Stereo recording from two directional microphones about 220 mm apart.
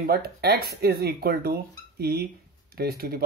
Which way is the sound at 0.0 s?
45° right (ahead or behind).